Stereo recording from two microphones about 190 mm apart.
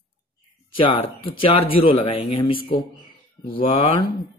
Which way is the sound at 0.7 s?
25° left (ahead or behind).